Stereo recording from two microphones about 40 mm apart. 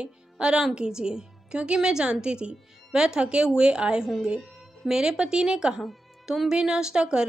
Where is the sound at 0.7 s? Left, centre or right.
Centre.